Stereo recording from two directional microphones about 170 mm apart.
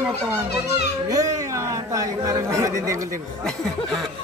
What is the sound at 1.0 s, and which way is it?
Speech, 20° right (ahead or behind).